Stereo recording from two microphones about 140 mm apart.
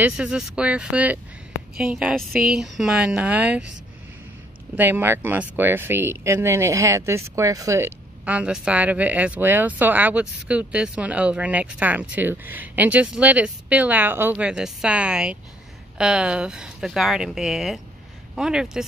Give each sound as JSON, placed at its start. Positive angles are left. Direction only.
{"t": 0.0, "sound": "speech", "side_deg": -5}
{"t": 4.7, "sound": "speech", "side_deg": -15}
{"t": 8.3, "sound": "speech", "side_deg": -10}